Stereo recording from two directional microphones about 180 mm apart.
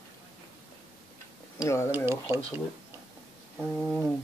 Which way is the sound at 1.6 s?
15° left (ahead or behind).